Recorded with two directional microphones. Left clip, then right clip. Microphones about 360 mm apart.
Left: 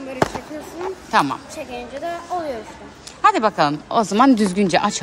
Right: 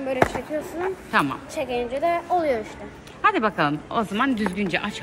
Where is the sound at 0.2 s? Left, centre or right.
Centre.